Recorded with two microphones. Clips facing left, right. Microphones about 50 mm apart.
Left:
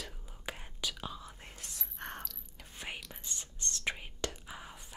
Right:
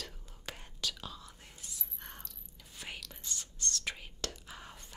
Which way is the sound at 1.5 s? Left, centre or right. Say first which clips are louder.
Left 3 dB; left.